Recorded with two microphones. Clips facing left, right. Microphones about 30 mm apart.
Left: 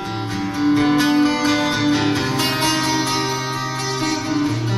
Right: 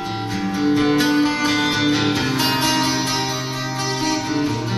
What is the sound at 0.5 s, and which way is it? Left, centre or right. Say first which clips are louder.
Music: left 1 dB; centre.